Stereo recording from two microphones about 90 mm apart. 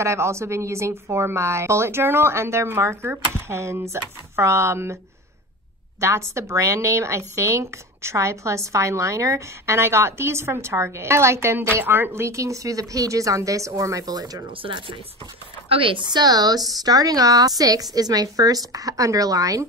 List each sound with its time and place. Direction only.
0.0 s speech: 30° right (ahead or behind)
5.9 s speech: 35° right (ahead or behind)
14.6 s a woman's voice: 75° right (ahead or behind); by 19.6 s 40° right (ahead or behind)